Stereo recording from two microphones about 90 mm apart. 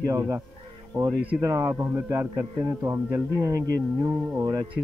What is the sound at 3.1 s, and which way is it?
Speech, 40° right (ahead or behind).